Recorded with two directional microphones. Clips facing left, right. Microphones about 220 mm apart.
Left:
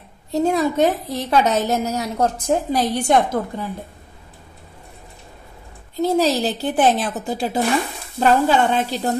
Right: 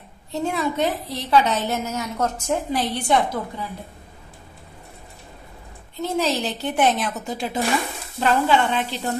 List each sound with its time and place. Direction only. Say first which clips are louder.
0.3 s a woman's voice: left 6 dB; 40° left (ahead or behind)
5.9 s a woman's voice: left 5 dB; 35° left (ahead or behind)